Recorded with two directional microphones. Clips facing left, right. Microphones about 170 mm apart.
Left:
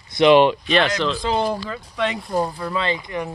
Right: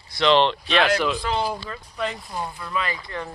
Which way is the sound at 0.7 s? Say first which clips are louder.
Left 1 dB; 5° right (ahead or behind).